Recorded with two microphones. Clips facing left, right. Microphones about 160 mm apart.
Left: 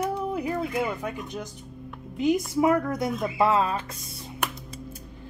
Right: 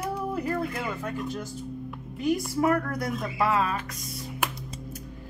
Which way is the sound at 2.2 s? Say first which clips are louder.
Left 2 dB; 20° left (ahead or behind).